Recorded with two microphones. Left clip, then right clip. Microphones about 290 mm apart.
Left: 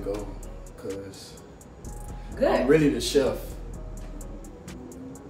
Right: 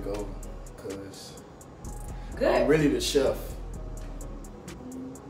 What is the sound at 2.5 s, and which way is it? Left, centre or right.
Speech, centre.